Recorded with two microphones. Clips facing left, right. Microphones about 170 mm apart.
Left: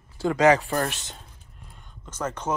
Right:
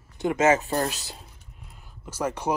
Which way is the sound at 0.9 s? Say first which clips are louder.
Right 1 dB; 35° right (ahead or behind).